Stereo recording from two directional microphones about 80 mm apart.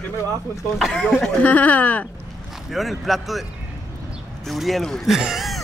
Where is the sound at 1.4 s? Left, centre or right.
Centre.